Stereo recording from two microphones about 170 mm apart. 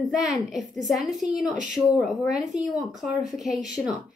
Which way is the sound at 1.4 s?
45° right (ahead or behind).